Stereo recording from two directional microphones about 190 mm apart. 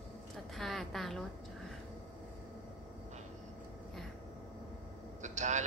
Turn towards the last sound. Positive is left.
turn(degrees=-40)  # may be behind; listen again after turning